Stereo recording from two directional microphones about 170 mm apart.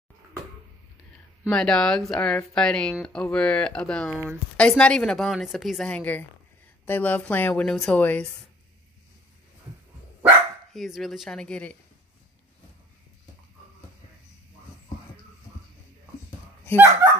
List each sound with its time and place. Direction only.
1.5 s a woman's voice: 5° left (ahead or behind)
10.7 s speech: centre (ahead or behind)
16.7 s speech: 20° right (ahead or behind)